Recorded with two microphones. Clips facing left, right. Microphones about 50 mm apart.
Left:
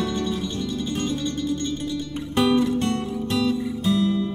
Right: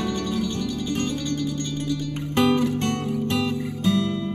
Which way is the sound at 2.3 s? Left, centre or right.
Right.